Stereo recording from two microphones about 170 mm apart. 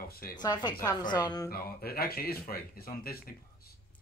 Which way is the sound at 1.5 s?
60° left (ahead or behind).